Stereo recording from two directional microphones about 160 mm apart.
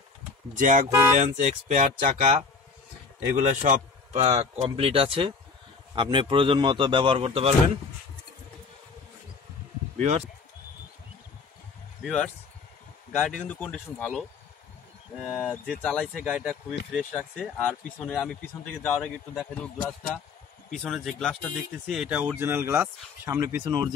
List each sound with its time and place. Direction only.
0.6 s speech: 50° right (ahead or behind)
0.8 s speech: 20° right (ahead or behind)
1.2 s speech: 50° right (ahead or behind)
3.3 s a man's voice: 50° right (ahead or behind)
9.9 s speech: 45° right (ahead or behind)
12.0 s speech: 5° left (ahead or behind)
15.1 s speech: 5° right (ahead or behind)
15.5 s speech: 5° left (ahead or behind)
17.6 s speech: 5° left (ahead or behind); by 23.9 s 25° right (ahead or behind)